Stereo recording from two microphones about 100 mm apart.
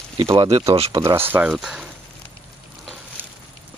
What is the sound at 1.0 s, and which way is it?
Speech, 25° right (ahead or behind).